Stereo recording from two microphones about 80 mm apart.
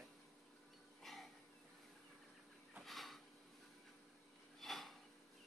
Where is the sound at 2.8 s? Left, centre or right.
Centre.